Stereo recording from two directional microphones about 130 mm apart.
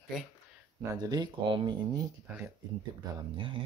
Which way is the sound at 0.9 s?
30° right (ahead or behind).